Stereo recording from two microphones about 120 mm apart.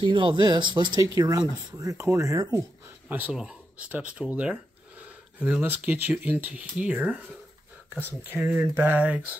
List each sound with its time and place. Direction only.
0.0 s speech: 40° right (ahead or behind); by 2.6 s 25° right (ahead or behind)
3.1 s speech: 15° right (ahead or behind)